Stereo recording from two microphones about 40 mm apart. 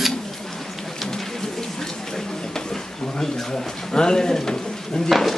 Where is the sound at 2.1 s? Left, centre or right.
Centre.